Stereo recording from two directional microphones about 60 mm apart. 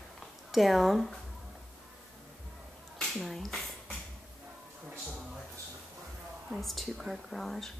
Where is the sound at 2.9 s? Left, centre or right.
Centre.